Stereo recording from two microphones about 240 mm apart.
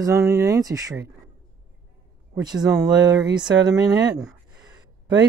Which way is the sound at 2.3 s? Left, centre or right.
Centre.